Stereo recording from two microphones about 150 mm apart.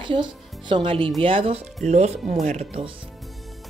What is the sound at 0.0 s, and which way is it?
Speech, 30° right (ahead or behind).